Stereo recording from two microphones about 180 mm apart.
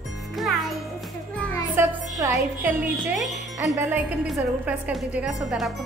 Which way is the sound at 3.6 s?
15° right (ahead or behind).